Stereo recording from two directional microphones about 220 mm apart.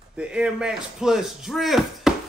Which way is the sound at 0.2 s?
5° right (ahead or behind).